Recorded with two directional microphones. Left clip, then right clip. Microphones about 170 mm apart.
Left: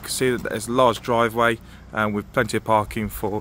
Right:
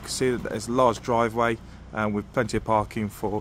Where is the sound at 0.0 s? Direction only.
10° left (ahead or behind).